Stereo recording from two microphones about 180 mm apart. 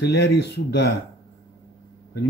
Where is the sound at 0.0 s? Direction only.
65° left (ahead or behind).